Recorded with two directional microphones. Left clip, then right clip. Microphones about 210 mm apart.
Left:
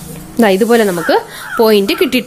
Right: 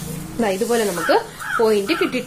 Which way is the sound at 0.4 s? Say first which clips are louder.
Left 9 dB; 50° left (ahead or behind).